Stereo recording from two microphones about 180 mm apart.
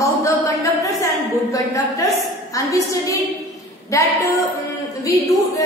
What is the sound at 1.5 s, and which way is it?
Speech, 20° left (ahead or behind).